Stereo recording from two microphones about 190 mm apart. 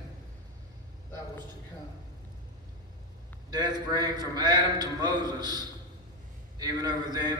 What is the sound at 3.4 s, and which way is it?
A man's voice, 20° right (ahead or behind).